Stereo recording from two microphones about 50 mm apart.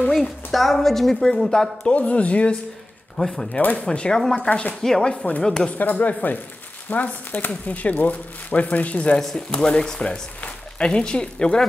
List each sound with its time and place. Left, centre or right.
0.1 s a woman's voice: centre
1.9 s speech: left
3.2 s speech: centre
3.5 s speech: left
4.4 s speech: left
4.8 s speech: centre
5.1 s speech: left
5.4 s speech: centre
5.7 s speech: left
9.2 s speech: centre